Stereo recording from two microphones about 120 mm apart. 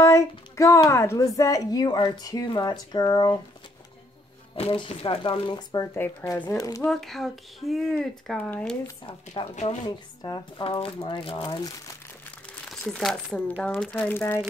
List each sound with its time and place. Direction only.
0.0 s speech: 25° left (ahead or behind)
4.6 s speech: 50° left (ahead or behind); by 5.9 s 35° left (ahead or behind)
5.9 s speech: 15° left (ahead or behind)
6.9 s speech: centre (ahead or behind)
9.0 s speech: 45° left (ahead or behind)
10.6 s speech: 50° left (ahead or behind)
12.6 s speech: centre (ahead or behind); by 14.4 s 20° left (ahead or behind)